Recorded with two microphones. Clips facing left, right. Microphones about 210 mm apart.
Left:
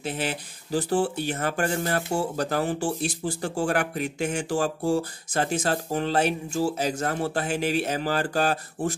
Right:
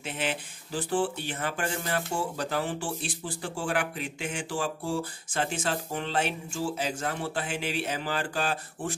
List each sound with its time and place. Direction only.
0.0 s speech: 40° left (ahead or behind)